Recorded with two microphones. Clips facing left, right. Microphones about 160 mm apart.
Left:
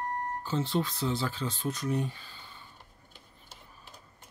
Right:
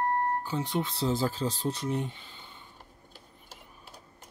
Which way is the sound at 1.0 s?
40° right (ahead or behind).